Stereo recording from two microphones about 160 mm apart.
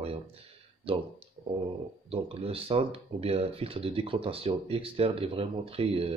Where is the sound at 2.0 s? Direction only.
40° right (ahead or behind).